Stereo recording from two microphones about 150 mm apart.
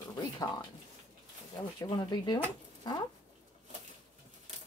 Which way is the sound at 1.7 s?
30° left (ahead or behind).